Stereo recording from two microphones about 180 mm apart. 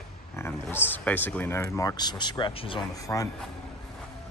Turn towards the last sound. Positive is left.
turn(degrees=20)  # may be behind; listen again after turning